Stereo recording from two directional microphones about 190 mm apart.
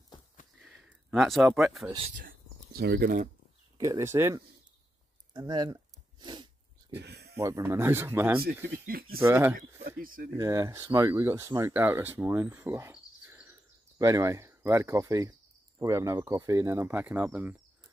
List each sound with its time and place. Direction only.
0.6 s a sound: centre (ahead or behind)
1.2 s speech: centre (ahead or behind)
2.0 s speech: 40° right (ahead or behind)
3.7 s speech: 20° right (ahead or behind)
5.3 s a sound: 25° right (ahead or behind)
6.9 s a sound: 60° right (ahead or behind)
7.3 s speech: 15° right (ahead or behind)
8.7 s speech: 50° right (ahead or behind)
9.2 s speech: 10° right (ahead or behind)
9.6 s speech: 50° right (ahead or behind)
10.3 s speech: 15° right (ahead or behind)